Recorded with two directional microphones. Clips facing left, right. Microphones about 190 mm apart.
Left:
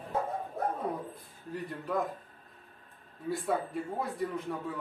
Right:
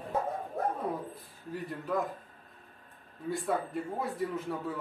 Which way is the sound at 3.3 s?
Centre (ahead or behind).